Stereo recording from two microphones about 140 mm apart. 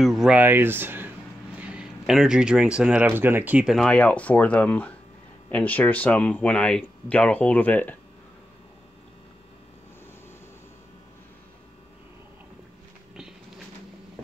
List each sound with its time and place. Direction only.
0.0 s speech: centre (ahead or behind)
0.4 s speech: 15° right (ahead or behind)
3.6 s speech: centre (ahead or behind)